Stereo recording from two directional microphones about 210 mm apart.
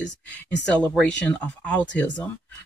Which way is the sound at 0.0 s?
5° left (ahead or behind).